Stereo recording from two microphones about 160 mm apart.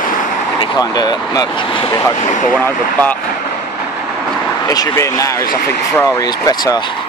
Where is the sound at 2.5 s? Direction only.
10° left (ahead or behind).